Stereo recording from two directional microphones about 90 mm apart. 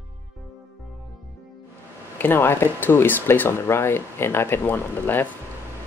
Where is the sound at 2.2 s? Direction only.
25° left (ahead or behind).